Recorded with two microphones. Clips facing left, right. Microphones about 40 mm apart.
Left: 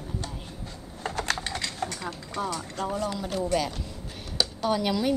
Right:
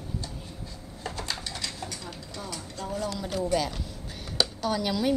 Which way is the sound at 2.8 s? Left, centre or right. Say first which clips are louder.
Left 5 dB; left.